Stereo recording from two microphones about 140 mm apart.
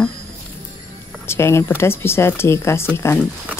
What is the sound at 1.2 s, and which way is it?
Speech, 20° left (ahead or behind).